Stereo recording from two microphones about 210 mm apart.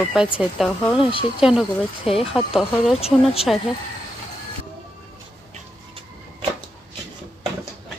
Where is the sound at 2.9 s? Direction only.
30° left (ahead or behind).